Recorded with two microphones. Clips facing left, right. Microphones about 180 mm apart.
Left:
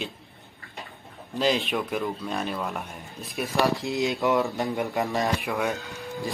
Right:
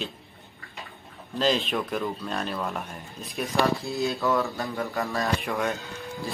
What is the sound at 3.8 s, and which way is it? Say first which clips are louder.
Speech: left 2 dB; 20° left (ahead or behind).